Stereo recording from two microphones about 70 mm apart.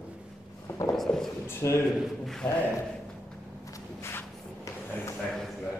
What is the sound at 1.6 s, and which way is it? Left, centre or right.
Speech, left.